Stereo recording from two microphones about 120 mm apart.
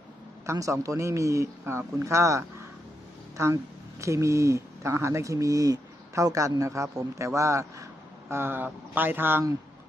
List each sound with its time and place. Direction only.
0.5 s speech: 25° right (ahead or behind)